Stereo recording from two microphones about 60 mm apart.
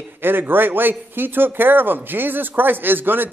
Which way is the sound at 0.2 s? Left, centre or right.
Right.